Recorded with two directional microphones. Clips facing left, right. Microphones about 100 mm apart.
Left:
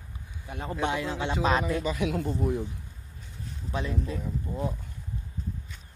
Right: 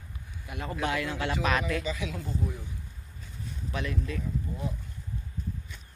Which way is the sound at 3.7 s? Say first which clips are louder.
Left 2 dB; 25° left (ahead or behind).